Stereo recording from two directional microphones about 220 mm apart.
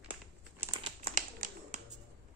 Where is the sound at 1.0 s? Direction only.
35° right (ahead or behind).